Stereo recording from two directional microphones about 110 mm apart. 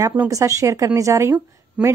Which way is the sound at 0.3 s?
30° right (ahead or behind).